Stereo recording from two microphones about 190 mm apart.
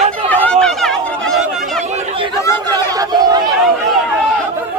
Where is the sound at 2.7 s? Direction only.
20° right (ahead or behind).